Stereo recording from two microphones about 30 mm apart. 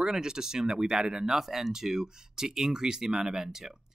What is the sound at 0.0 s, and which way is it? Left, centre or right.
Speech, right.